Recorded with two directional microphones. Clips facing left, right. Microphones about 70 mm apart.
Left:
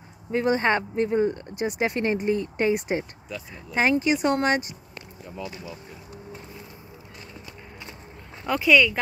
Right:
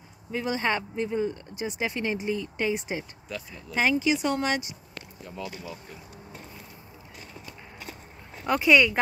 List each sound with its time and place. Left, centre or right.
0.3 s speech: left
5.3 s speech: centre
8.5 s speech: centre